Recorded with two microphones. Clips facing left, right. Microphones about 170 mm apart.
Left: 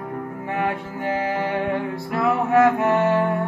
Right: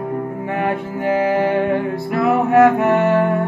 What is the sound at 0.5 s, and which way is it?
Mantra, 65° right (ahead or behind).